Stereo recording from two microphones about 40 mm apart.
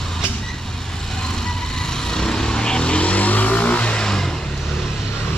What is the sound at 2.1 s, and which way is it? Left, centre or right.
Vehicle, centre.